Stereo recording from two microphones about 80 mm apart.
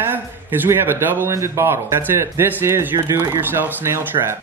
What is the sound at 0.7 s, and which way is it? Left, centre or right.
Speech, right.